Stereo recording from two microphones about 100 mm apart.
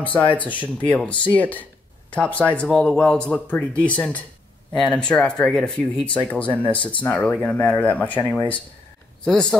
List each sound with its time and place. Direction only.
0.4 s speech: 15° left (ahead or behind)
6.2 s speech: 15° left (ahead or behind)